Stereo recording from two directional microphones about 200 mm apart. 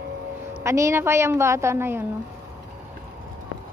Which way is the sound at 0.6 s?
15° right (ahead or behind).